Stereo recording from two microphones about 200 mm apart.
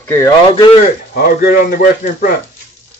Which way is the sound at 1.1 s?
45° left (ahead or behind).